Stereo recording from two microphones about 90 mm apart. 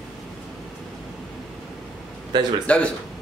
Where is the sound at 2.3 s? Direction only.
55° right (ahead or behind).